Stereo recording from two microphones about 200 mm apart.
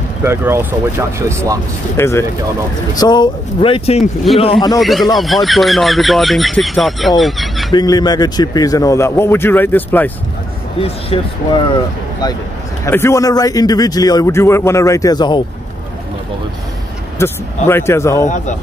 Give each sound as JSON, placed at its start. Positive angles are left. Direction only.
{"t": 0.2, "sound": "speech", "side_deg": -10}
{"t": 2.0, "sound": "a man's voice", "side_deg": 15}
{"t": 4.7, "sound": "speech", "side_deg": 0}
{"t": 7.7, "sound": "a man's voice", "side_deg": 20}
{"t": 10.8, "sound": "a man's voice", "side_deg": 25}
{"t": 17.2, "sound": "a man's voice", "side_deg": 15}